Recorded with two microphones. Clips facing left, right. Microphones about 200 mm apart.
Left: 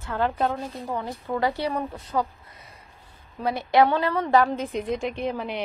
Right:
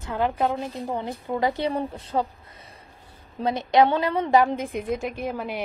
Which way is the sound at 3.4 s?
20° right (ahead or behind).